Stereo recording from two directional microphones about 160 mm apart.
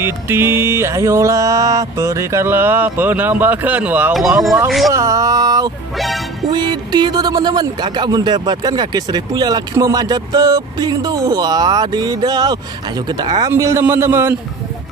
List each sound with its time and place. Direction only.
0.0 s music: 15° right (ahead or behind)
4.6 s speech: centre (ahead or behind)
4.9 s speech: 20° right (ahead or behind)
5.9 s music: centre (ahead or behind)
6.4 s speech: 25° right (ahead or behind)
13.5 s music: 15° right (ahead or behind)